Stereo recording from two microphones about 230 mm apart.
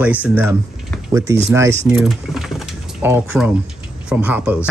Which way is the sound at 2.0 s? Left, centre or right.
Centre.